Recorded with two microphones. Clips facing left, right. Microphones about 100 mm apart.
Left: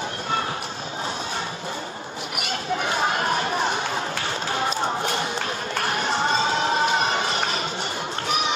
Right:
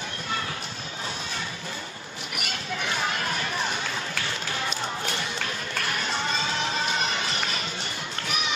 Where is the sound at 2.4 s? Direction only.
30° left (ahead or behind).